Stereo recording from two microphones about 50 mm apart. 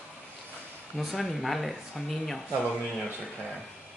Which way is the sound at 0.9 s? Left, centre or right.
Centre.